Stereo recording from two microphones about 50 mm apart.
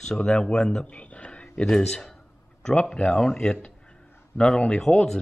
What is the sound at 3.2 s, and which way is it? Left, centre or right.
Speech, centre.